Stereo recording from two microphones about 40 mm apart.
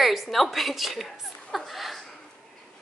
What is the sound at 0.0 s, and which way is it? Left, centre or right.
A woman's voice, centre.